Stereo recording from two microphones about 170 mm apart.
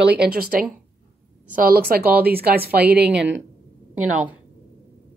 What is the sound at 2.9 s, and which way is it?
Speech, 80° right.